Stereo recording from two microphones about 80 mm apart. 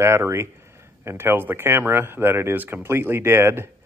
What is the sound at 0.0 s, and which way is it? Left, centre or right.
Speech, right.